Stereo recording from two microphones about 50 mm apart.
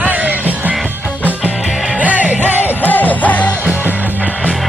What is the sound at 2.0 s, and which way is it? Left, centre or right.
Music, right.